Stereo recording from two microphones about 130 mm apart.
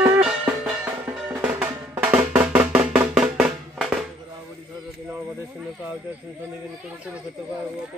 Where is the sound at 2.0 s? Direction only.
10° right (ahead or behind).